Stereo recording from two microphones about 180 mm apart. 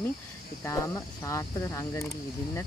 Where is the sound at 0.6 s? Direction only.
15° left (ahead or behind).